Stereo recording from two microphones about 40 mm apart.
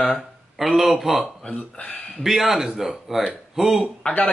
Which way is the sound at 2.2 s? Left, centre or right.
Centre.